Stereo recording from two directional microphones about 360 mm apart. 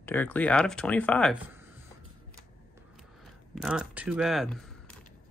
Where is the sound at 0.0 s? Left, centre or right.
Centre.